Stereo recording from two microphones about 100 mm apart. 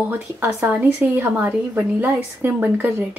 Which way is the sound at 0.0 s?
20° right (ahead or behind).